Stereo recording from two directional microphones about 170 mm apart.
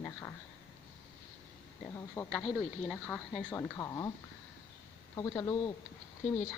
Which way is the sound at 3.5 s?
15° left (ahead or behind).